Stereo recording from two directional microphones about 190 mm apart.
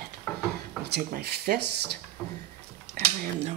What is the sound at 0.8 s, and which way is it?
Speech, 60° right (ahead or behind).